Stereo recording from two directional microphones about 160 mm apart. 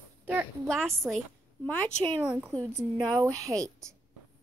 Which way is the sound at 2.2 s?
10° right (ahead or behind).